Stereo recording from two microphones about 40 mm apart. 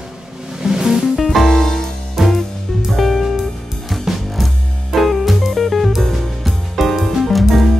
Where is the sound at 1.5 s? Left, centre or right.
Centre.